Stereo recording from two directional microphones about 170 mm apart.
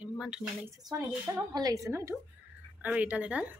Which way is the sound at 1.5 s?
20° right (ahead or behind).